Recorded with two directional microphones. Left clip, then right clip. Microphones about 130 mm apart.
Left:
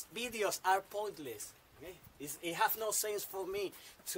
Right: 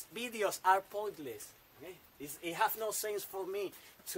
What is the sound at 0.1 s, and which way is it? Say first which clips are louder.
Speech: right 1 dB; 25° right (ahead or behind).